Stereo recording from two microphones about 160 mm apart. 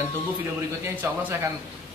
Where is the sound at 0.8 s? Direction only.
15° right (ahead or behind).